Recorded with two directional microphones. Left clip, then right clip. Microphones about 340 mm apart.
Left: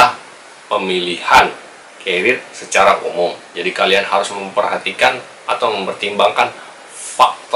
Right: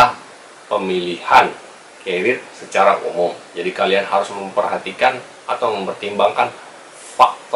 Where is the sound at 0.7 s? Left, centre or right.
Centre.